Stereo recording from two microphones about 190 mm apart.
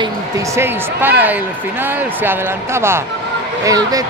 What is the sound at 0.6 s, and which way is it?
Speech, 10° right (ahead or behind).